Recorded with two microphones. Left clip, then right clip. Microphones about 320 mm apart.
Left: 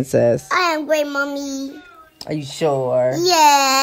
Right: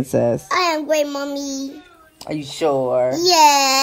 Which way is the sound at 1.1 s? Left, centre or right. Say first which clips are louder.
Left 3 dB; centre.